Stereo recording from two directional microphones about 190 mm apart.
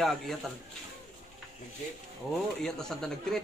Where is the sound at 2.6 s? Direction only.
5° left (ahead or behind).